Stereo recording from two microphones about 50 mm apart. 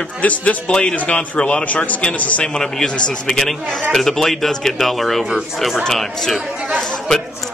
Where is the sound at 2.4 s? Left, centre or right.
Centre.